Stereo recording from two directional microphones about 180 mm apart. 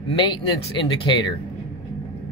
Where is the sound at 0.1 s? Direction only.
25° left (ahead or behind).